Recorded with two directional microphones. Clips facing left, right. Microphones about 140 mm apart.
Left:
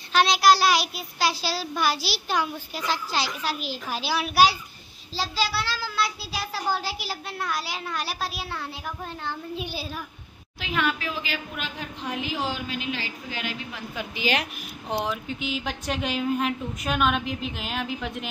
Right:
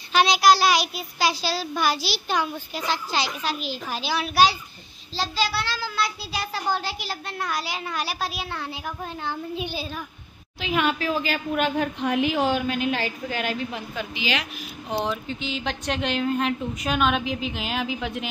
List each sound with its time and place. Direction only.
0.1 s a child's voice: centre (ahead or behind)
10.9 s a man's voice: 40° right (ahead or behind)
14.1 s a woman's voice: 50° left (ahead or behind)
15.0 s a child's voice: 5° left (ahead or behind)